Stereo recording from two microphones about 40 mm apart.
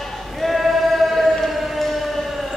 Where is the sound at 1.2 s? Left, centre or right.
Centre.